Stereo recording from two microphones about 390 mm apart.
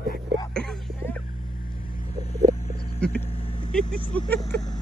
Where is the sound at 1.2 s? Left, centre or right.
Left.